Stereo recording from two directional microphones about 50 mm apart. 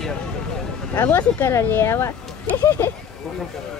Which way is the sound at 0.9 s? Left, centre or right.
Left.